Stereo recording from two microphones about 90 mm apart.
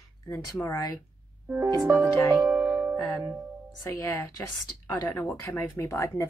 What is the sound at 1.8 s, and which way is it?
Speech, 25° right (ahead or behind).